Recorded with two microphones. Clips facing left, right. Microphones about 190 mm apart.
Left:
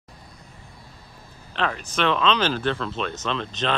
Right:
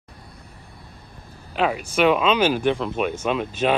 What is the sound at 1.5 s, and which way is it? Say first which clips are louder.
Speech: right 5 dB; 10° right (ahead or behind).